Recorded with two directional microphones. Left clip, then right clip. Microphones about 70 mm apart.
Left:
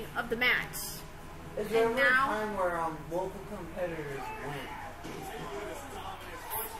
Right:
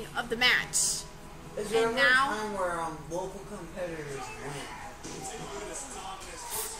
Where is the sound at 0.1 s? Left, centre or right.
Centre.